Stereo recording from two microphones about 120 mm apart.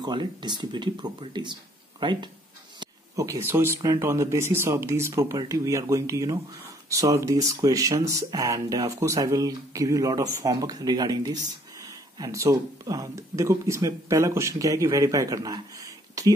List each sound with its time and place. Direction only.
0.0 s speech: 40° right (ahead or behind)
3.2 s speech: 25° right (ahead or behind)